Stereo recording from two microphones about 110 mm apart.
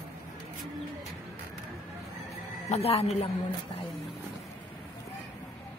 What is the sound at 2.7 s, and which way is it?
Speech, 65° left (ahead or behind).